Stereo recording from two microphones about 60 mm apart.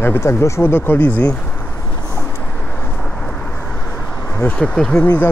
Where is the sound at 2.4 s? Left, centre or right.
Left.